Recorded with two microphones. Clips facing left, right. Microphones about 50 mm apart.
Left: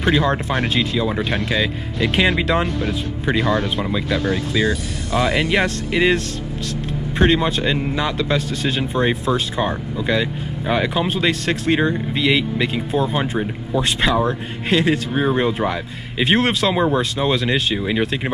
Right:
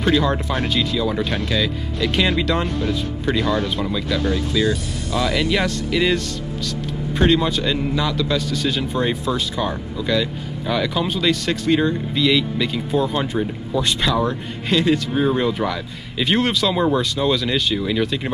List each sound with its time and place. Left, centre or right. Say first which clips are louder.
0.0 s speech: even; centre
7.2 s speech: left 1 dB; left
8.9 s speech: left 2 dB; left
12.9 s speech: right 1 dB; centre; by 16.7 s left
16.7 s speech: left 1 dB; centre